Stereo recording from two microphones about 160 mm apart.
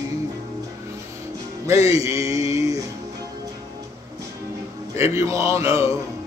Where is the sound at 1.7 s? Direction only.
20° right (ahead or behind).